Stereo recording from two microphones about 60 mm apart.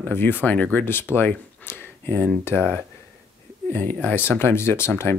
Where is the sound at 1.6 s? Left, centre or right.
Left.